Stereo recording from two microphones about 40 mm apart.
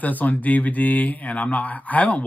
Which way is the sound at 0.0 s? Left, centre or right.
Left.